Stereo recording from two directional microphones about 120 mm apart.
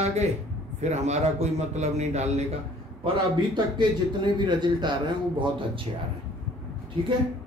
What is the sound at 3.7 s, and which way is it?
A man's voice, 40° right (ahead or behind).